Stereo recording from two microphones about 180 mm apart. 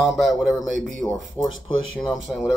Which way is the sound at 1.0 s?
20° left (ahead or behind).